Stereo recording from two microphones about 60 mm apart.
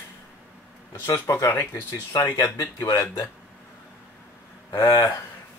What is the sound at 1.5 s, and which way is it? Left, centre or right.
Speech, left.